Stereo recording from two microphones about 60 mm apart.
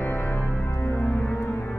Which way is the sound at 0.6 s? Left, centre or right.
Left.